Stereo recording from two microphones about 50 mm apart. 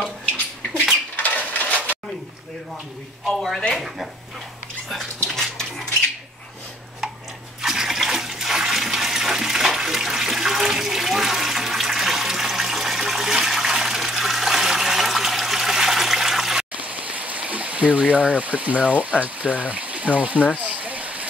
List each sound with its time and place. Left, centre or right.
1.1 s a sound: left
3.3 s speech: centre
5.3 s dog: centre
7.6 s toilet flush: centre
16.8 s stream: right
18.3 s speech: right